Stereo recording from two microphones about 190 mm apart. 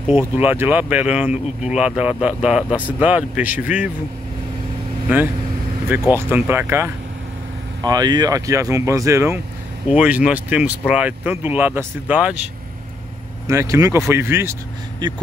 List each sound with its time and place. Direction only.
0.0 s a man's voice: 10° right (ahead or behind)
5.0 s a man's voice: 10° right (ahead or behind)
13.5 s a man's voice: 15° right (ahead or behind)